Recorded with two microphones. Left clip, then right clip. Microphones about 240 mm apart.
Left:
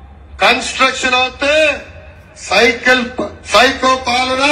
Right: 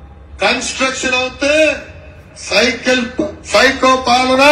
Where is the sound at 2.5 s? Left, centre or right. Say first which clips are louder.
Left 3 dB; centre.